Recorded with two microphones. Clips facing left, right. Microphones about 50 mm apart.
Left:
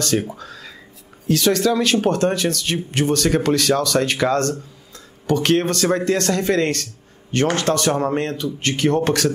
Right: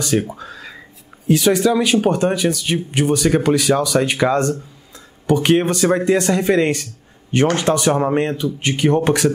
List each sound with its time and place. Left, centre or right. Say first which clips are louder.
0.0 s a man's voice: right 2 dB; centre